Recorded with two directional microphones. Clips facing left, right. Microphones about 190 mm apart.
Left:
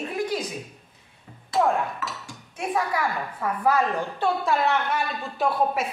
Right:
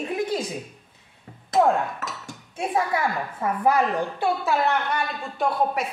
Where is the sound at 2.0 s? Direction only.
45° right (ahead or behind).